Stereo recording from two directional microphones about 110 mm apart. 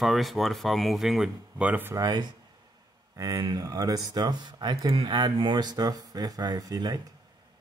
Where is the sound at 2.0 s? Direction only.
40° right (ahead or behind).